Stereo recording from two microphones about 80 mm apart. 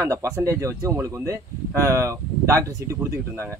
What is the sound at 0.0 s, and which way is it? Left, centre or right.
Speech, right.